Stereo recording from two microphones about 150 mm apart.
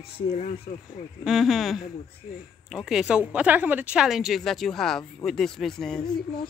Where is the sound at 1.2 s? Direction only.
Centre (ahead or behind).